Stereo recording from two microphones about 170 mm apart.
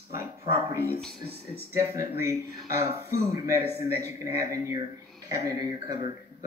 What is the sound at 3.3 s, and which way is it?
Speech, 20° right (ahead or behind).